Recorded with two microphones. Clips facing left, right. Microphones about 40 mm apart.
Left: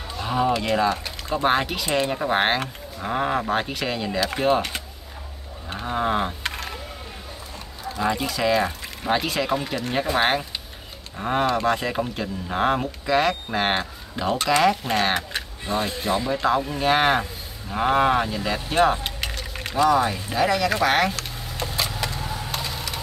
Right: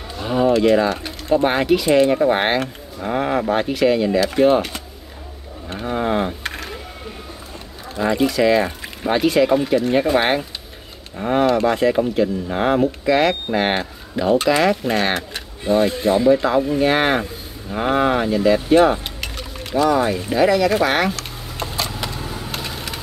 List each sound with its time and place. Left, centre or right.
0.2 s speech: centre
8.0 s speech: centre
22.6 s wood: centre